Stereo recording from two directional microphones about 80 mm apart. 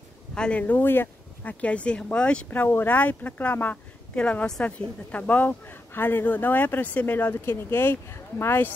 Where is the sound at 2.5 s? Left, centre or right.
Left.